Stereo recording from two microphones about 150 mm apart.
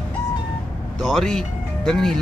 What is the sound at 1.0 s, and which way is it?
Speech, centre (ahead or behind).